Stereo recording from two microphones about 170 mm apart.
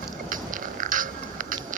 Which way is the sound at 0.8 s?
50° right (ahead or behind).